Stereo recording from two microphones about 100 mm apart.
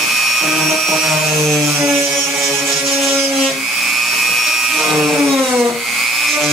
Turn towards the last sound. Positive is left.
turn(degrees=0)  # may be behind; listen again after turning